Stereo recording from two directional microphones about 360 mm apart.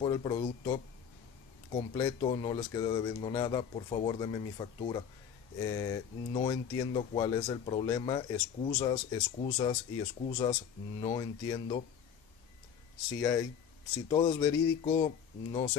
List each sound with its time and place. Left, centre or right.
0.0 s speech: centre
14.0 s speech: centre